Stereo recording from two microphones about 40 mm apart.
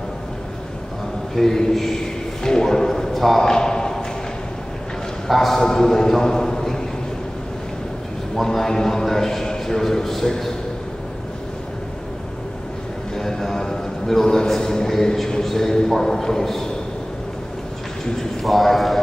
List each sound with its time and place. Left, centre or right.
1.3 s a sound: centre
5.3 s a man's voice: centre
8.4 s a man's voice: centre
13.1 s music: centre
14.2 s a man's voice: centre
18.4 s speech: centre